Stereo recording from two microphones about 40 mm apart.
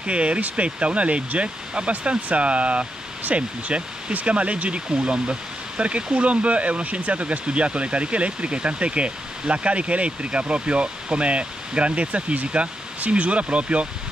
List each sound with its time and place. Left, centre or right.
0.0 s speech: right